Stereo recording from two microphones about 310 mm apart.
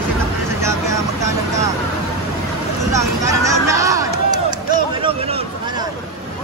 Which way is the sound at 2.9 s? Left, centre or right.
Centre.